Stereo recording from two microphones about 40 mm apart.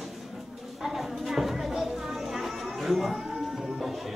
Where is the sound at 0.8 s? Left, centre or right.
Centre.